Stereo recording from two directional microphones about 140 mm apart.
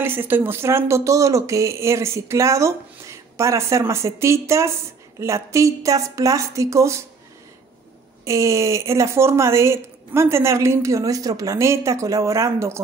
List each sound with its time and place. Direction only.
0.0 s speech: 15° right (ahead or behind)
8.3 s speech: 20° right (ahead or behind)